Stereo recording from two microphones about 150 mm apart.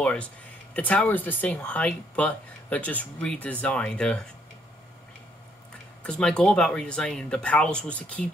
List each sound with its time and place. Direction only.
0.0 s speech: 5° left (ahead or behind)
6.0 s speech: 5° left (ahead or behind)